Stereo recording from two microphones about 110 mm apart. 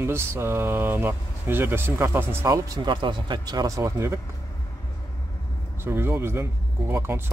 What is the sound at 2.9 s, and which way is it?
Speech, 45° right (ahead or behind).